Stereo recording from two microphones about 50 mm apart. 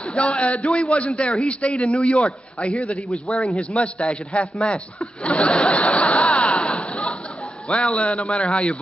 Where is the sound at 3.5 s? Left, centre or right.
Left.